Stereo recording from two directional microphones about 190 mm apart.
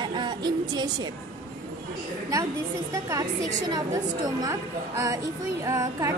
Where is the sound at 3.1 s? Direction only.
20° right (ahead or behind).